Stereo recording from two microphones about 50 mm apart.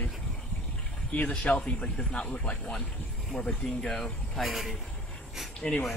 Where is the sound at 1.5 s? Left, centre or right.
Left.